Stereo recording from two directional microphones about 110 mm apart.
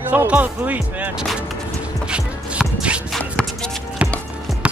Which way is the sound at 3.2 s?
10° left (ahead or behind).